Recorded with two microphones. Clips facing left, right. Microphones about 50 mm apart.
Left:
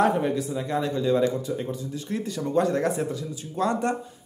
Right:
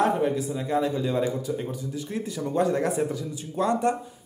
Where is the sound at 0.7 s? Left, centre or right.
Centre.